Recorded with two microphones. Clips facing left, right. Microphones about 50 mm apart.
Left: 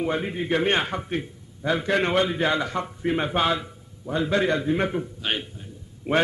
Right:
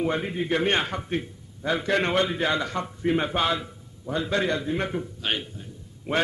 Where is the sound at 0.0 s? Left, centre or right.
Centre.